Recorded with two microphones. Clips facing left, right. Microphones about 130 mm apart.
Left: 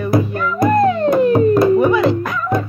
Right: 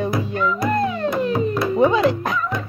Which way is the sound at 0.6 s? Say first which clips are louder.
Left 10 dB; 55° left (ahead or behind).